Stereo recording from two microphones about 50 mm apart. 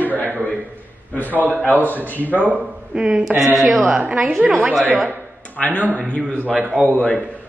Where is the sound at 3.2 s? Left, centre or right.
Centre.